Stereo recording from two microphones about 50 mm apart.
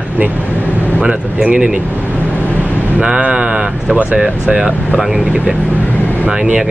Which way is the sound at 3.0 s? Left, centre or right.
Right.